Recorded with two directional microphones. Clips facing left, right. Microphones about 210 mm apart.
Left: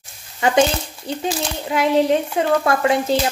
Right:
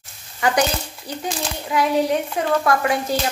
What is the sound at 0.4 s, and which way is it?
Speech, 25° left (ahead or behind).